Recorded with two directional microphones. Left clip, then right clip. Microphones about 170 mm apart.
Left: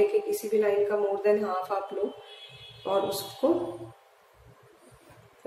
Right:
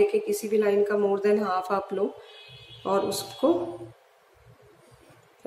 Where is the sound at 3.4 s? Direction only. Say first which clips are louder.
Right 2 dB; 20° right (ahead or behind).